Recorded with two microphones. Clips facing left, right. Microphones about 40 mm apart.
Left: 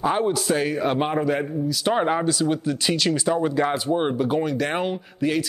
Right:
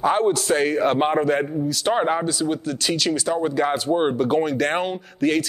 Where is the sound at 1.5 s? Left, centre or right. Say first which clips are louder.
Right 1 dB; centre.